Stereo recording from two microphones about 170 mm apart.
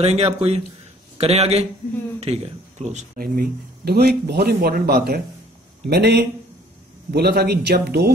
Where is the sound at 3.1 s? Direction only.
60° right (ahead or behind).